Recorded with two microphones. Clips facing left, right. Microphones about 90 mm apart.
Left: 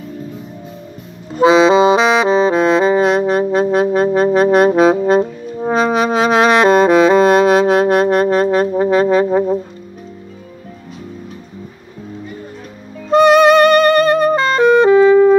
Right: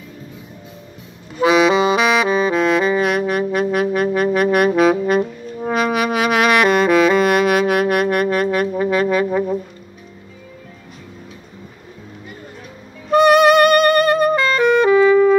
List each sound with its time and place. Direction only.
1.4 s saxophone: 25° left (ahead or behind)
13.1 s music: 25° left (ahead or behind)